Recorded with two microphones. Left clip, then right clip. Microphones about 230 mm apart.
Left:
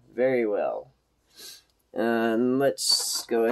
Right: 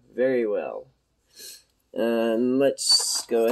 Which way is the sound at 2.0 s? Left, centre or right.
Centre.